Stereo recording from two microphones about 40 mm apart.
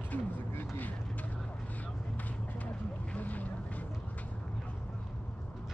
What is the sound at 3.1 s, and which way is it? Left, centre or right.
Boat, left.